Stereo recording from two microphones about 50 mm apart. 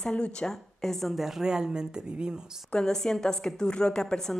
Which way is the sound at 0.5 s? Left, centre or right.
Centre.